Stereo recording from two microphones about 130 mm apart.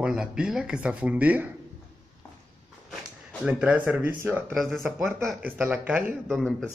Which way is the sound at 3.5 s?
10° right (ahead or behind).